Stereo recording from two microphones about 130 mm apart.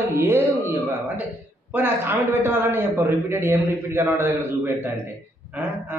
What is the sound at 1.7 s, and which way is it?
Speech, 15° right (ahead or behind).